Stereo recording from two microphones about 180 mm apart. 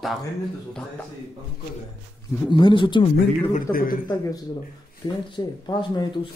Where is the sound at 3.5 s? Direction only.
50° left (ahead or behind).